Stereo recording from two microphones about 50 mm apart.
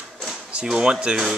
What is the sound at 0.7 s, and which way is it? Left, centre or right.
Speech, centre.